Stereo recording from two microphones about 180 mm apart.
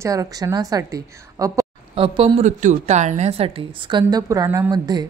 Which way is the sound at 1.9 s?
30° right (ahead or behind).